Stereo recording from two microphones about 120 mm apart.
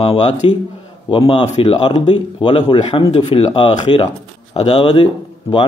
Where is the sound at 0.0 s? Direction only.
50° left (ahead or behind).